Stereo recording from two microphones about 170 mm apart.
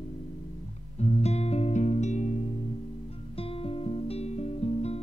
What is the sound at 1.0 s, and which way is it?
Music, 40° left (ahead or behind).